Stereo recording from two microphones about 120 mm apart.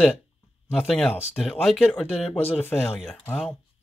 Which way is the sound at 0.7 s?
5° left (ahead or behind).